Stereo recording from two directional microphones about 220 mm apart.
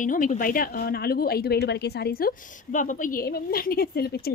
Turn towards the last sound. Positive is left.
turn(degrees=45)  # may be behind; listen again after turning